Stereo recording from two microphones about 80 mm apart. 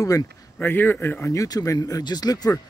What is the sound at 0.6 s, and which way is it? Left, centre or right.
Speech, left.